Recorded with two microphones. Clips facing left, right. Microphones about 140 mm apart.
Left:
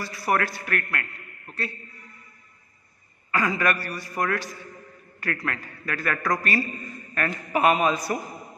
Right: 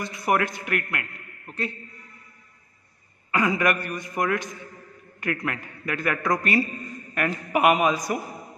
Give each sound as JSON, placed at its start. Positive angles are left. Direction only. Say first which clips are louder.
{"t": 0.0, "sound": "a man's voice", "louder": "right 1 dB", "side_deg": -20}
{"t": 3.3, "sound": "a man's voice", "louder": "right 2 dB", "side_deg": -15}